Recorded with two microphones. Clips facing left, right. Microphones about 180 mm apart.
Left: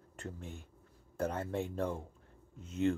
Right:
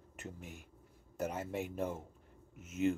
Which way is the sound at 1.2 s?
5° right (ahead or behind).